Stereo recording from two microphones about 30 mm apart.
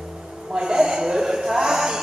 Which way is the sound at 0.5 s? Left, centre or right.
Right.